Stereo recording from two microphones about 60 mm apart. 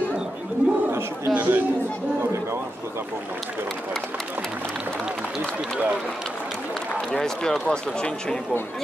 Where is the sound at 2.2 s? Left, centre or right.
Right.